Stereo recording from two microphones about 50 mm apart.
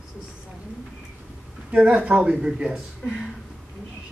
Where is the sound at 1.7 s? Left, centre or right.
Right.